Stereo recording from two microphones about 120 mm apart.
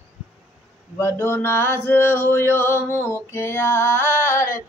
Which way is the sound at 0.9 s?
20° left (ahead or behind).